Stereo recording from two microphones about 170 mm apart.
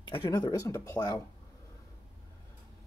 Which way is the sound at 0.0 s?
30° left (ahead or behind).